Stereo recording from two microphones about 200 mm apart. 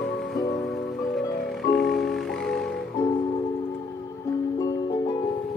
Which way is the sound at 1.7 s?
Centre (ahead or behind).